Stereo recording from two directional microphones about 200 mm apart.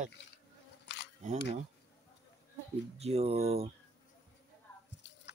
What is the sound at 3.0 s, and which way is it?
Speech, 30° right (ahead or behind).